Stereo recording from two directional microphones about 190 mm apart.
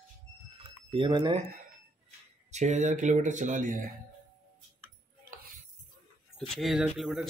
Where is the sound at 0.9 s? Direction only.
25° right (ahead or behind).